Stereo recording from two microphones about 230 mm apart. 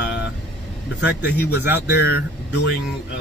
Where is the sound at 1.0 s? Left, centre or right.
Left.